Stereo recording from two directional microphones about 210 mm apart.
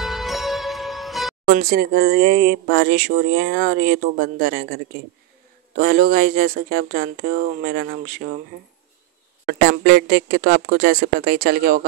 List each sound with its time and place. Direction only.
0.0 s music: centre (ahead or behind)
1.5 s speech: 45° right (ahead or behind)
9.5 s speech: 50° right (ahead or behind)